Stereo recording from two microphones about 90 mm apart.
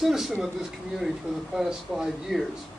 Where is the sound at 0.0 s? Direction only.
5° right (ahead or behind).